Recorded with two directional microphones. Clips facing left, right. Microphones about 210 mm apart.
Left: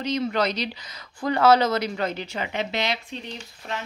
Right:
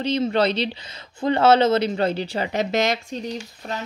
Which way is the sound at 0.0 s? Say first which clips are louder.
Right 4 dB; 30° right (ahead or behind).